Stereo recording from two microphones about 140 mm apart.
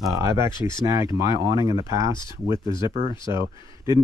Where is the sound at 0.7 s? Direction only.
25° right (ahead or behind).